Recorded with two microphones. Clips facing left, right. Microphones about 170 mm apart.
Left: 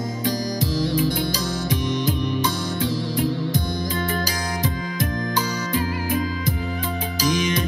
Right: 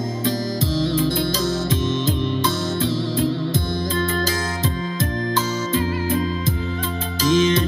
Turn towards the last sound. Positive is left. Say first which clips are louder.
# right 5 dB
turn(degrees=15)  # may be behind; listen again after turning